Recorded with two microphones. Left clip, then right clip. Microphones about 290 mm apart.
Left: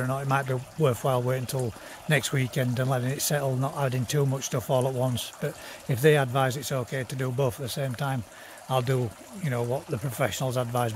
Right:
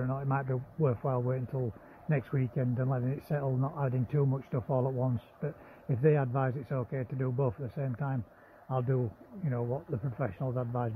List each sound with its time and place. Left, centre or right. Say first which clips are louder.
0.0 s speech: left 7 dB; centre